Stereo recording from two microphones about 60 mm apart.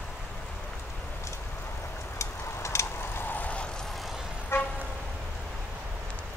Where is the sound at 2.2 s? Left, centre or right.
Left.